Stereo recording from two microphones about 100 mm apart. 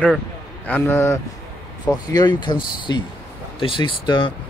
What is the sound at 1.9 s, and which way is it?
Speech, 45° left (ahead or behind).